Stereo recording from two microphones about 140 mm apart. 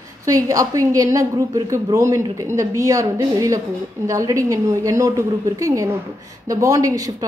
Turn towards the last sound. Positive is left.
turn(degrees=-25)  # may be behind; listen again after turning